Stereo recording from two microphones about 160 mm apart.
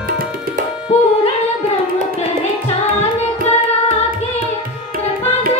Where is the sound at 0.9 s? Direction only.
40° left (ahead or behind).